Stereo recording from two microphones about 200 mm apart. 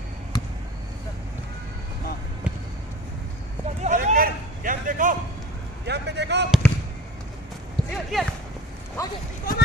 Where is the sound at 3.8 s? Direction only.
35° right (ahead or behind).